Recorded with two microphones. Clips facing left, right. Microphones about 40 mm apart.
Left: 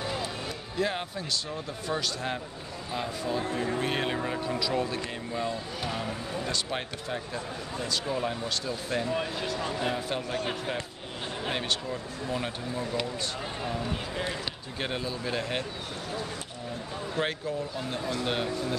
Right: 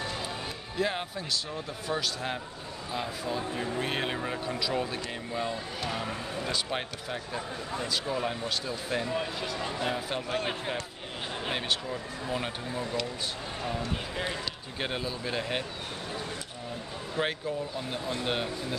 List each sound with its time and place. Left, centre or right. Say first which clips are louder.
0.7 s speech: even; centre
9.1 s speech: left 2 dB; centre
10.3 s speech: right 3 dB; centre
11.4 s speech: left 1 dB; centre
14.1 s speech: left 1 dB; centre
17.2 s speech: even; centre